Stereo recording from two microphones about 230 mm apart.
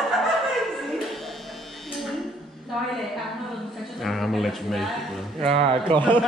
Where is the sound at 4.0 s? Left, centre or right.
Centre.